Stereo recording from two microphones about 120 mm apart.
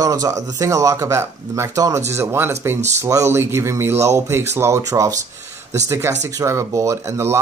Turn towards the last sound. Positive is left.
turn(degrees=-20)  # may be behind; listen again after turning